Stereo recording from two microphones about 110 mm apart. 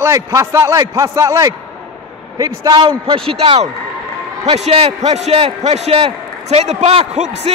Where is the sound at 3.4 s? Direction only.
70° right (ahead or behind).